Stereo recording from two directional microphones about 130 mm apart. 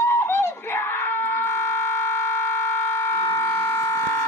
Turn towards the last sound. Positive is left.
turn(degrees=20)  # may be behind; listen again after turning